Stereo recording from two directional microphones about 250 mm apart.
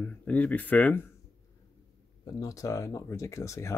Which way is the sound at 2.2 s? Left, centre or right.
Centre.